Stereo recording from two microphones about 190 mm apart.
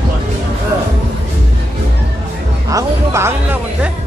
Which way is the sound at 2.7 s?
15° right (ahead or behind).